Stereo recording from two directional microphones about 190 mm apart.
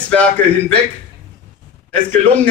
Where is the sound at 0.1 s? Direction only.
5° left (ahead or behind).